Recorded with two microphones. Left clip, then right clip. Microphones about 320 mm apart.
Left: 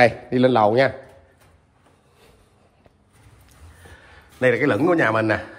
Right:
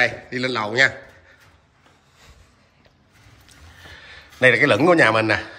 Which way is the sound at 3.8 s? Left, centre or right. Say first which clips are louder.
Right 6 dB; centre.